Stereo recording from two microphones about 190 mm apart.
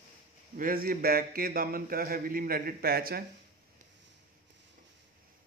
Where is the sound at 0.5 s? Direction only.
50° right (ahead or behind).